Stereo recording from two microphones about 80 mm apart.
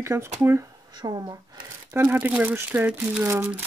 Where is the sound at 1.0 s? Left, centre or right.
Right.